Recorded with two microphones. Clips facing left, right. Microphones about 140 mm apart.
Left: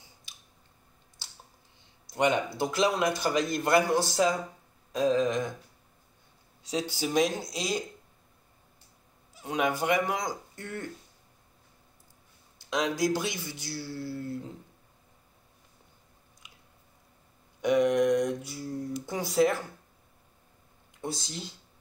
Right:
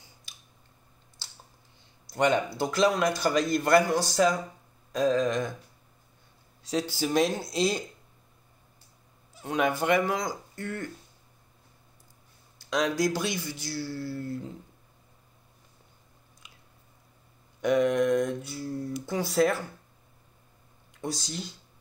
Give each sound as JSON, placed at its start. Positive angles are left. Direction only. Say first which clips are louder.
{"t": 2.0, "sound": "a man's voice", "louder": "right 2 dB", "side_deg": 15}
{"t": 6.6, "sound": "a man's voice", "louder": "right 2 dB", "side_deg": 20}
{"t": 7.2, "sound": "mantra", "louder": "right 2 dB", "side_deg": 15}
{"t": 9.3, "sound": "speech", "louder": "right 2 dB", "side_deg": 10}
{"t": 12.6, "sound": "a man's voice", "louder": "right 1 dB", "side_deg": 20}
{"t": 17.6, "sound": "mantra", "louder": "even", "side_deg": 15}
{"t": 19.0, "sound": "a man's voice", "louder": "right 1 dB", "side_deg": 15}
{"t": 21.0, "sound": "a man's voice", "louder": "right 2 dB", "side_deg": 25}